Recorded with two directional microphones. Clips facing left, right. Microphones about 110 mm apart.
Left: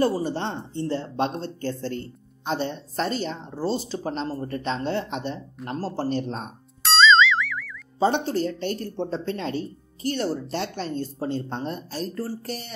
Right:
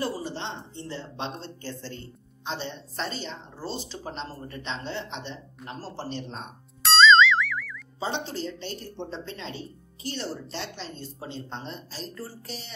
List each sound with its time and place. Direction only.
0.0 s speech: 50° left (ahead or behind)
6.8 s boing: centre (ahead or behind)
8.0 s speech: 50° left (ahead or behind)